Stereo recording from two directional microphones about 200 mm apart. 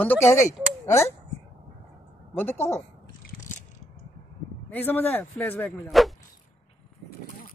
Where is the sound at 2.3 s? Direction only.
10° left (ahead or behind).